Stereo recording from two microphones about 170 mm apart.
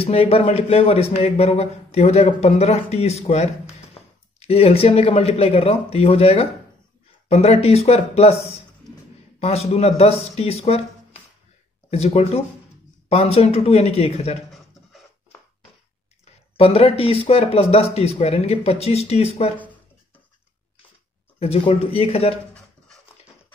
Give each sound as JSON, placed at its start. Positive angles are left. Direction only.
{"t": 0.0, "sound": "speech", "side_deg": 35}
{"t": 9.4, "sound": "speech", "side_deg": 35}
{"t": 11.9, "sound": "speech", "side_deg": 40}
{"t": 14.5, "sound": "a sound", "side_deg": 0}
{"t": 16.5, "sound": "speech", "side_deg": 35}
{"t": 21.4, "sound": "speech", "side_deg": 35}